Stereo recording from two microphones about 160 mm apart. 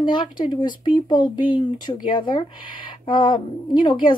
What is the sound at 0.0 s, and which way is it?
Speech, 30° left (ahead or behind).